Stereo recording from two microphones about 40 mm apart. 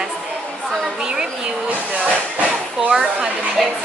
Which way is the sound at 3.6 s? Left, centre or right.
Centre.